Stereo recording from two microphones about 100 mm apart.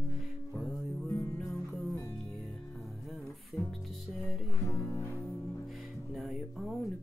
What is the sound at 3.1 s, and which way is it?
Music, centre (ahead or behind).